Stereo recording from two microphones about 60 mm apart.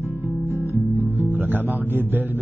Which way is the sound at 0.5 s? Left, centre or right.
Left.